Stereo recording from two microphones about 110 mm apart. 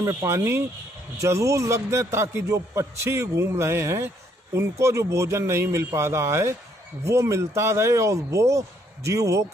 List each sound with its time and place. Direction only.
0.0 s a man's voice: 30° right (ahead or behind)